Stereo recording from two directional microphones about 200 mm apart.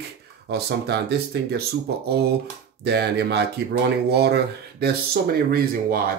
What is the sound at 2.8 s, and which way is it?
Speech, 55° right (ahead or behind).